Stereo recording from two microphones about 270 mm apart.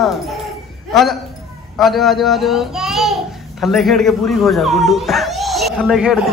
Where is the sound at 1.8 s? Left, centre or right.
Centre.